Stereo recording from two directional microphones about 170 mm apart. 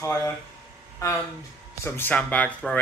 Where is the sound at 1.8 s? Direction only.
10° left (ahead or behind).